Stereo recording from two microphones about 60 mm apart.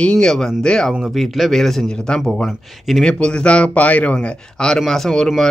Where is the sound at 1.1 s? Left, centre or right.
Centre.